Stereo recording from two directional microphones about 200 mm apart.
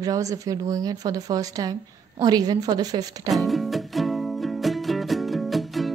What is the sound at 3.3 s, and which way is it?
Music, centre (ahead or behind).